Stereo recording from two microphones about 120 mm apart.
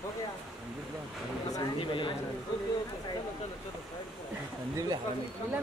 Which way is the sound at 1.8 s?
45° left (ahead or behind).